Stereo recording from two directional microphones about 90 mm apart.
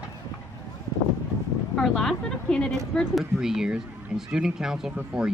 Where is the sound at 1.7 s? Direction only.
5° left (ahead or behind).